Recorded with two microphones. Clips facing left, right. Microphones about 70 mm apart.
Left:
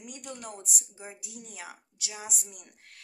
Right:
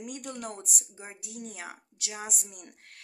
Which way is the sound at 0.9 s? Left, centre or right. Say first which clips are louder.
Right 2 dB; right.